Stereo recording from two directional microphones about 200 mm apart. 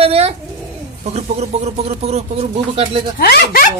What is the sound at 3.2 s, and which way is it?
Speech, 50° left (ahead or behind).